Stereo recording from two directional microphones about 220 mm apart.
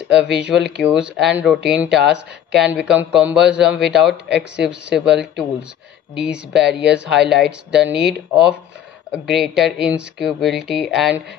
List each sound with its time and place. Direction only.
0.6 s speech: centre (ahead or behind)